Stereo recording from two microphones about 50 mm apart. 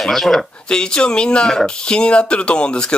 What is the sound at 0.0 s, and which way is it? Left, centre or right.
Speech, centre.